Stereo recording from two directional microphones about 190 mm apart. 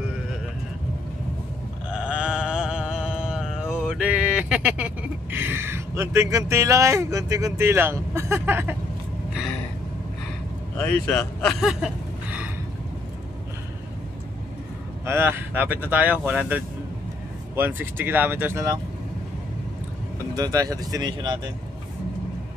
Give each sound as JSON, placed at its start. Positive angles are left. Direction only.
{"t": 1.9, "sound": "sheep", "side_deg": -5}
{"t": 10.8, "sound": "speech", "side_deg": 10}
{"t": 15.0, "sound": "speech", "side_deg": -10}
{"t": 20.3, "sound": "speech", "side_deg": -20}